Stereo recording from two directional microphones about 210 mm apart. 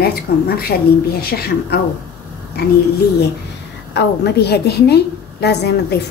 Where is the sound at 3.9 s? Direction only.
50° left (ahead or behind).